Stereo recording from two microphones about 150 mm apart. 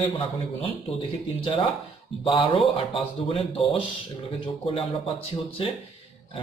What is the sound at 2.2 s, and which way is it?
Speech, 35° left (ahead or behind).